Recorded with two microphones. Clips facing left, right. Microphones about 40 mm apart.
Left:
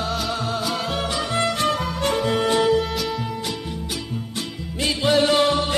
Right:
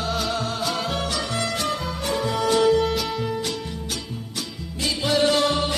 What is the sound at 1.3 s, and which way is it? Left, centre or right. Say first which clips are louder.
Music: left 4 dB; left.